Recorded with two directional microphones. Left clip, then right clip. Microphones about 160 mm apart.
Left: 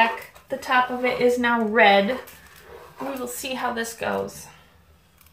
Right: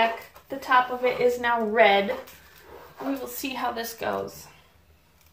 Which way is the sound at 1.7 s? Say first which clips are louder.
Left 3 dB; 20° right (ahead or behind).